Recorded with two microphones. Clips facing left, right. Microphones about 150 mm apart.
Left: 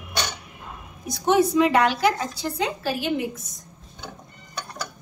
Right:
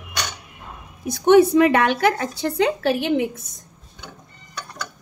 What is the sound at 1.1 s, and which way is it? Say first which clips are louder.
Speech: right 6 dB; 60° right (ahead or behind).